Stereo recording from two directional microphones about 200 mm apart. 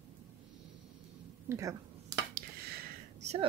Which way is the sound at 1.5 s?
15° right (ahead or behind).